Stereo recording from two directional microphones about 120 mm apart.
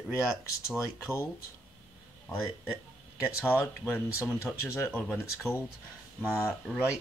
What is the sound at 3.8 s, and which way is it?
Speech, 15° left (ahead or behind).